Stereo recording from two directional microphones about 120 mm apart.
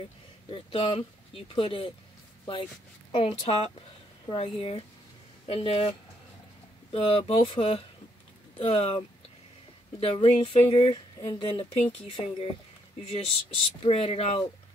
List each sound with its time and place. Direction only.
0.5 s speech: 50° left (ahead or behind)
13.8 s speech: 60° left (ahead or behind)